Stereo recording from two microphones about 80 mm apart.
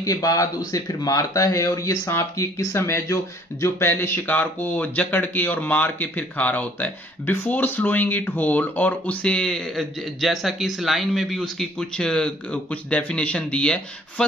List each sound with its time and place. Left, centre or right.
0.0 s speech: left; by 14.2 s centre